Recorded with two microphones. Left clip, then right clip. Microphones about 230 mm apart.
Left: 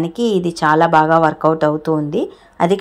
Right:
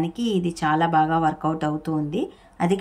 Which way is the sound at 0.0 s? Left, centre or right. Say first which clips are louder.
Left 8 dB; centre.